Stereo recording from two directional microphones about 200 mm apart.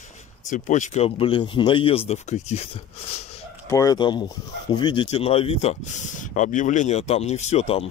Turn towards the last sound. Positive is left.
turn(degrees=30)  # may be behind; listen again after turning